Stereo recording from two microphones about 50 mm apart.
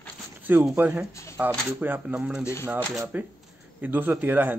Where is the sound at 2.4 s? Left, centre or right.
Left.